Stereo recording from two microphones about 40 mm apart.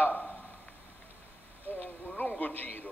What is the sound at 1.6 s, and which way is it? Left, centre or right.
A man's voice, left.